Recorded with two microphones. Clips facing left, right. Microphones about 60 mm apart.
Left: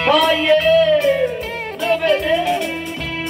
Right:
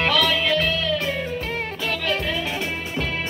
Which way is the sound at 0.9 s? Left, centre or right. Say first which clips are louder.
Left 10 dB; centre.